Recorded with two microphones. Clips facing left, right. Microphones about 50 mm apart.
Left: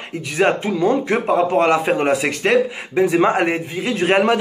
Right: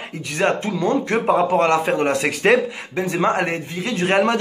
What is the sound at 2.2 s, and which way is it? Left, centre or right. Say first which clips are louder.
Speech: even; centre.